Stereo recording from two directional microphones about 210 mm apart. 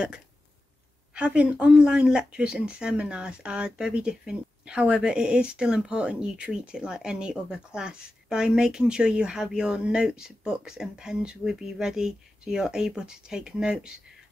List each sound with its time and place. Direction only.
1.1 s speech: 5° right (ahead or behind)